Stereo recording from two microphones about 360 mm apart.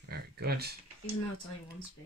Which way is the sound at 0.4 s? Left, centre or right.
Right.